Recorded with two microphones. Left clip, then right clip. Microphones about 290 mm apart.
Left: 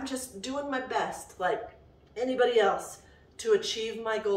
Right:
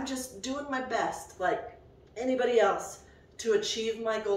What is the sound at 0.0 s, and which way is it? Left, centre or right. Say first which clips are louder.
A woman's voice: even; centre.